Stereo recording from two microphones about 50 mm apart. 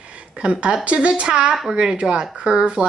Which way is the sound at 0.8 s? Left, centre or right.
Right.